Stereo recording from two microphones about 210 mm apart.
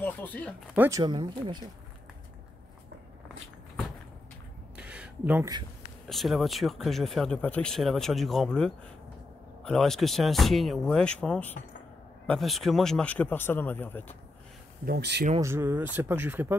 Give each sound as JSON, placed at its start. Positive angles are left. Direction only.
{"t": 0.0, "sound": "speech", "side_deg": 10}
{"t": 0.7, "sound": "speech", "side_deg": -15}
{"t": 4.7, "sound": "a sound", "side_deg": -5}
{"t": 6.0, "sound": "speech", "side_deg": 0}
{"t": 14.9, "sound": "speech", "side_deg": -50}
{"t": 15.4, "sound": "speech", "side_deg": -10}